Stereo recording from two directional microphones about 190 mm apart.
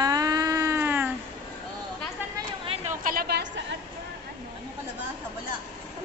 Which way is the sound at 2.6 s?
35° right (ahead or behind).